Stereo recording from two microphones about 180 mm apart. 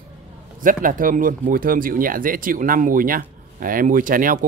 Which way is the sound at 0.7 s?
50° right (ahead or behind).